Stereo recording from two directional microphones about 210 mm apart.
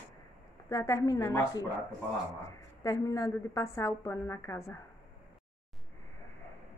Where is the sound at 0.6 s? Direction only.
15° left (ahead or behind).